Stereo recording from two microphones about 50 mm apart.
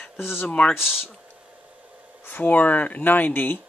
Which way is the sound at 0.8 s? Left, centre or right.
Centre.